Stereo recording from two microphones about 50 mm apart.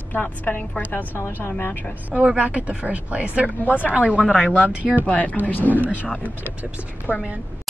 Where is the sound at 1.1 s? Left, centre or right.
Left.